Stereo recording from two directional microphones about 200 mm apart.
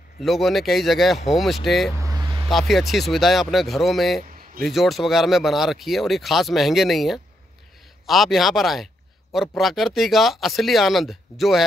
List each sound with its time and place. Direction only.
0.2 s speech: centre (ahead or behind)
2.0 s a sound: 15° right (ahead or behind)
2.5 s speech: centre (ahead or behind)